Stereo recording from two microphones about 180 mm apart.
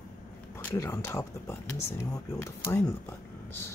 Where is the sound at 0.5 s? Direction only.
15° left (ahead or behind).